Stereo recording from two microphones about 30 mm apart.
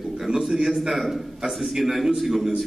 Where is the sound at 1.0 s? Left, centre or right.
Centre.